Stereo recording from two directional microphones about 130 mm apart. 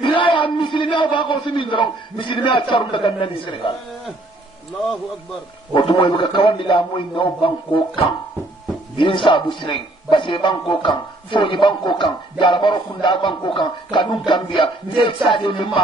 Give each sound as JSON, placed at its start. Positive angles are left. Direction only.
{"t": 0.0, "sound": "a sound", "side_deg": 40}
{"t": 3.2, "sound": "a man's voice", "side_deg": 45}
{"t": 5.7, "sound": "speech", "side_deg": 40}